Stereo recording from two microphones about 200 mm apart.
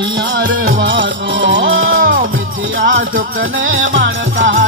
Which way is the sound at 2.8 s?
70° right (ahead or behind).